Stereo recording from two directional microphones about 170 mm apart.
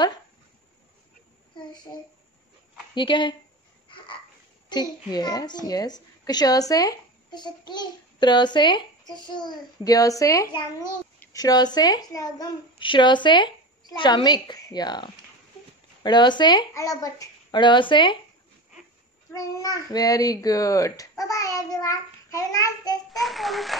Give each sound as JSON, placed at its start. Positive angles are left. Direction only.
{"t": 2.9, "sound": "a child's voice", "side_deg": 25}
{"t": 4.6, "sound": "a child's voice", "side_deg": 25}
{"t": 19.3, "sound": "a child's voice", "side_deg": 20}
{"t": 23.1, "sound": "a child's voice", "side_deg": 0}